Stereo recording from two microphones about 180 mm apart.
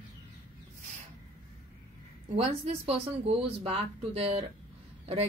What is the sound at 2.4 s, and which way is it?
A woman's voice, 35° right (ahead or behind).